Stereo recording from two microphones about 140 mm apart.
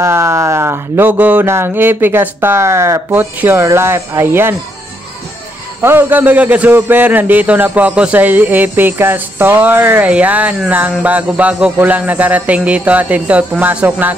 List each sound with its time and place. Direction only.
0.0 s a man's voice: 20° right (ahead or behind)
5.8 s a man's voice: 15° right (ahead or behind)